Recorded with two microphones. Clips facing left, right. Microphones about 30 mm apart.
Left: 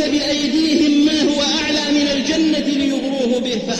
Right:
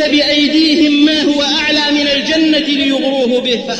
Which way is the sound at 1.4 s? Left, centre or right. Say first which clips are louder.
Right 5 dB; right.